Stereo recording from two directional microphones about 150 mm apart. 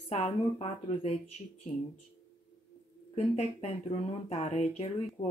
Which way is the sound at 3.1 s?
45° left (ahead or behind).